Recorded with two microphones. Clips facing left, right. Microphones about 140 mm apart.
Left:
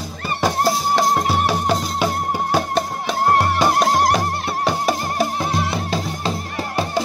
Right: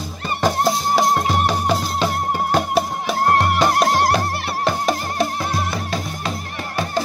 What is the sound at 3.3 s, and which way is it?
Music, 10° left (ahead or behind).